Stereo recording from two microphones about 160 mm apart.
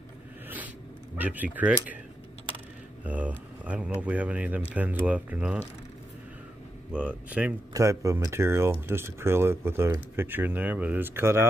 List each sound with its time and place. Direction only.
1.1 s speech: 10° right (ahead or behind)
3.1 s speech: 10° right (ahead or behind)
6.9 s speech: 5° right (ahead or behind)
7.7 s speech: 20° right (ahead or behind)